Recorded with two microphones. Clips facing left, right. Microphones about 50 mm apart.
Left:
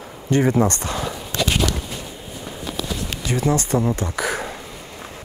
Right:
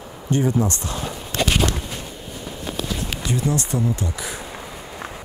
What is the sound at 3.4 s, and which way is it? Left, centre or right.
Speech, left.